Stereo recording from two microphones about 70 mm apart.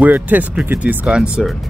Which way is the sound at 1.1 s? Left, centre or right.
Centre.